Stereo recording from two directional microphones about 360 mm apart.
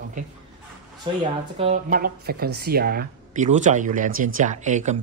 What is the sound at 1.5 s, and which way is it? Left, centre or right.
Speech, centre.